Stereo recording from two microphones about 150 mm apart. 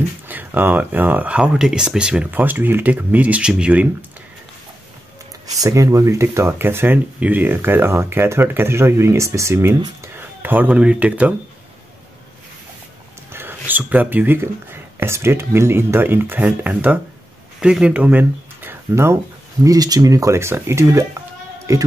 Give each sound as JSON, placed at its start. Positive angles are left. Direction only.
{"t": 0.3, "sound": "speech", "side_deg": -10}
{"t": 5.5, "sound": "speech", "side_deg": -20}
{"t": 13.3, "sound": "speech", "side_deg": -15}